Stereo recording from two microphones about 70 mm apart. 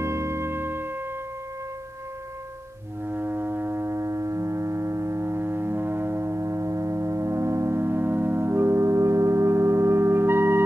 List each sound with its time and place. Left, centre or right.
0.0 s music: right
3.1 s foghorn: right